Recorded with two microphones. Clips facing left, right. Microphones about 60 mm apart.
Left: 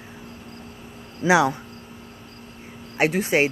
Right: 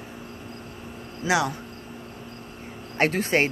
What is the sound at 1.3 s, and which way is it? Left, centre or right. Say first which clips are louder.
Speech: left 6 dB; left.